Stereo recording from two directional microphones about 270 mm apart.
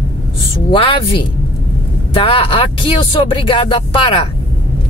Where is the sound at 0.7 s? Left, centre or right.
Centre.